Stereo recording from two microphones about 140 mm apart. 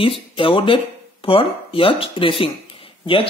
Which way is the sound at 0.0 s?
40° left (ahead or behind).